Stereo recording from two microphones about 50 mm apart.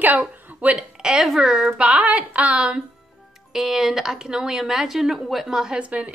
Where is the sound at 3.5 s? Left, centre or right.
Centre.